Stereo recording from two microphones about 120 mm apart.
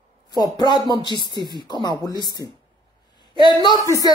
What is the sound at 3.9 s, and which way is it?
Speech, 30° left (ahead or behind).